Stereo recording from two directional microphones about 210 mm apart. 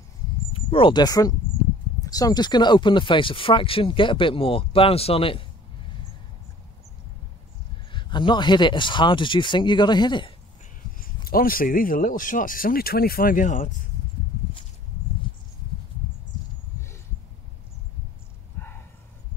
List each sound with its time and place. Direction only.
0.5 s speech: 25° left (ahead or behind)
7.9 s speech: 20° left (ahead or behind)
11.2 s speech: 45° left (ahead or behind)
15.3 s a sound: 25° left (ahead or behind)